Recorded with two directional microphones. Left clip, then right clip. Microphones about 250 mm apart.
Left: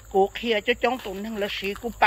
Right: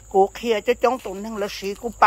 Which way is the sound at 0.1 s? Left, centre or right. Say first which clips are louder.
Right 3 dB; centre.